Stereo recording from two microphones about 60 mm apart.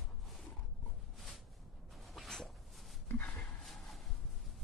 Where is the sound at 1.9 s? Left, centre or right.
Centre.